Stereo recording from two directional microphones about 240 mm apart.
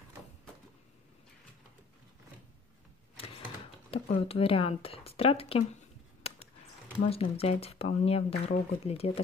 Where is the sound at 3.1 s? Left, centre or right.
Left.